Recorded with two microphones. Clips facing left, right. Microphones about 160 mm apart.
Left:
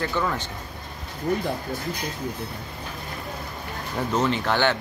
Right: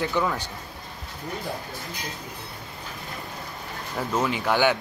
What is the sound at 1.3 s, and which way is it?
Speech, 55° left (ahead or behind).